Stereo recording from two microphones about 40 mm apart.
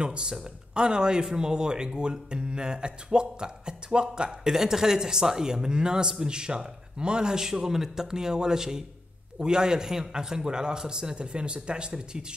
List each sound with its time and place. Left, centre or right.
0.0 s speech: right
4.5 s a man's voice: centre